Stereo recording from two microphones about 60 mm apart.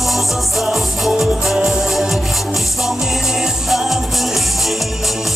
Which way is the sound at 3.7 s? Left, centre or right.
Centre.